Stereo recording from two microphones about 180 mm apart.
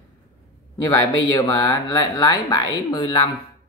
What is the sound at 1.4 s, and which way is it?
Speech, 20° left (ahead or behind).